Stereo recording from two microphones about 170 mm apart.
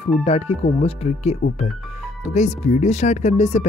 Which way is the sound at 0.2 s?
35° left (ahead or behind).